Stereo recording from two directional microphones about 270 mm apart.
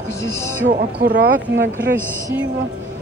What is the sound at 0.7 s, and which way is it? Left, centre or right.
Speech, right.